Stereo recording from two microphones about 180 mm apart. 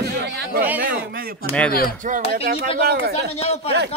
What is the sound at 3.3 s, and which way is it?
Speech, 35° left (ahead or behind).